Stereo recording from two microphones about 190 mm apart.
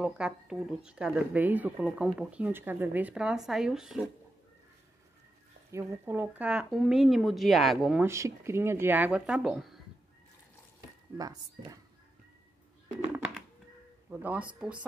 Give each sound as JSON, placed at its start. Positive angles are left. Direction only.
{"t": 0.0, "sound": "speech", "side_deg": -5}
{"t": 5.7, "sound": "speech", "side_deg": -15}
{"t": 8.1, "sound": "speech", "side_deg": -15}
{"t": 11.1, "sound": "speech", "side_deg": -20}
{"t": 14.1, "sound": "speech", "side_deg": -10}